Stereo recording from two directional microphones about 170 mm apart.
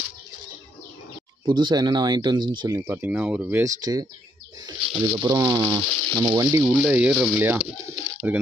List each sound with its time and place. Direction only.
1.4 s speech: 25° right (ahead or behind)
2.9 s speech: 10° right (ahead or behind)
6.6 s speech: 5° left (ahead or behind)
6.9 s speech: 5° right (ahead or behind)